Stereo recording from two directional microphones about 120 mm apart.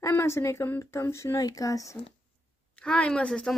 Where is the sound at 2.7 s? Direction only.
10° left (ahead or behind).